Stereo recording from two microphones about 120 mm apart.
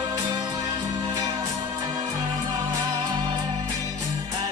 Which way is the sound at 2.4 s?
30° right (ahead or behind).